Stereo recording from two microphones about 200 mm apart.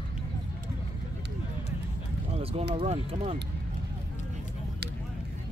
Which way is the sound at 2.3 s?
30° right (ahead or behind).